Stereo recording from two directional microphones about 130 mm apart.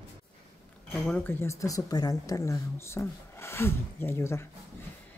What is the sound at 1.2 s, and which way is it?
Speech, 20° left (ahead or behind).